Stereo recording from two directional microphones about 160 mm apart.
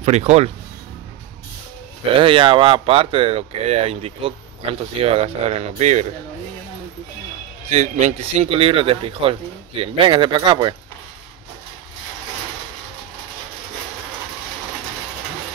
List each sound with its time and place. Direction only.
0.0 s speech: 45° right (ahead or behind)
2.1 s speech: 30° right (ahead or behind)
7.7 s speech: 45° right (ahead or behind); by 10.8 s 30° right (ahead or behind)